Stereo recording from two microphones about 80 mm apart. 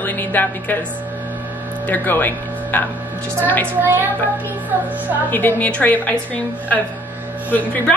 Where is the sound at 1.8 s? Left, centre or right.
Left.